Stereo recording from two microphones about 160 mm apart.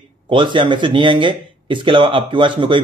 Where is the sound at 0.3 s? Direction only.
30° right (ahead or behind).